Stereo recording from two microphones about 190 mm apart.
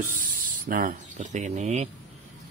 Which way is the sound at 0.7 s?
45° right (ahead or behind).